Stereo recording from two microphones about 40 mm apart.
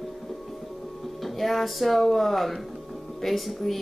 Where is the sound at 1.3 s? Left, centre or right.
Centre.